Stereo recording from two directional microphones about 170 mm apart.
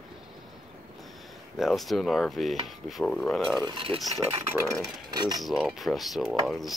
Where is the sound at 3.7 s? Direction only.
30° right (ahead or behind).